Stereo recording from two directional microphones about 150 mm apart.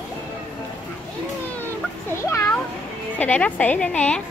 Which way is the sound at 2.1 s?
20° left (ahead or behind).